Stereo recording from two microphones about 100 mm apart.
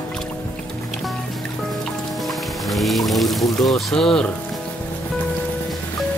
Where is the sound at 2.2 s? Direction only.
Centre (ahead or behind).